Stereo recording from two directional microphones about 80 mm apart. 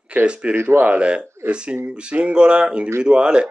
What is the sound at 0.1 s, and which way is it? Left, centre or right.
Speech, centre.